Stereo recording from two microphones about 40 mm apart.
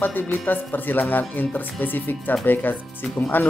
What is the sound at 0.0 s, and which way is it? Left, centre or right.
Speech, left.